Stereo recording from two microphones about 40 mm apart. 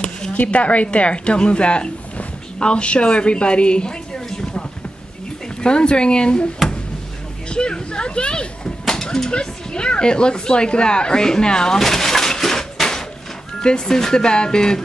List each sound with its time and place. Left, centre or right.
0.3 s a woman's voice: left
7.4 s speech: left
8.8 s speech: centre
11.8 s a sound: centre
13.6 s speech: centre